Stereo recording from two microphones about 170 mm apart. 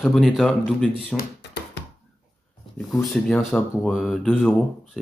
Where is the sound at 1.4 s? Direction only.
90° left.